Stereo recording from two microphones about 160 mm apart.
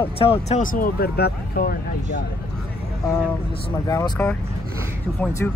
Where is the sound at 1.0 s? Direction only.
75° left (ahead or behind).